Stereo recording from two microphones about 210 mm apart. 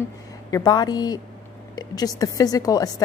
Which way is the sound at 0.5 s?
20° left (ahead or behind).